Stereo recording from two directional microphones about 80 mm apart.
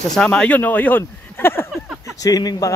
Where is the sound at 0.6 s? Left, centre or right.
Left.